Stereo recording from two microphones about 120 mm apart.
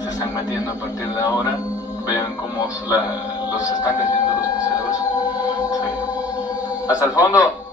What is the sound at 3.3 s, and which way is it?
Speech, 30° left (ahead or behind).